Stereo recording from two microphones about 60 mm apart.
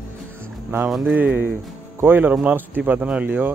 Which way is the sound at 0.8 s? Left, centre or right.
Centre.